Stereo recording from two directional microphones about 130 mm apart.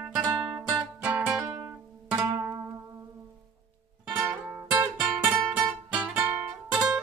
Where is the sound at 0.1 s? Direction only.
30° right (ahead or behind).